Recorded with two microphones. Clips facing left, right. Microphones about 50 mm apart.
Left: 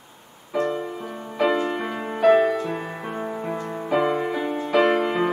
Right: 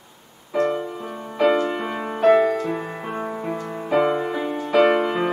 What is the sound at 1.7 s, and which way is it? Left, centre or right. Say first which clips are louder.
Music: right 1 dB; centre.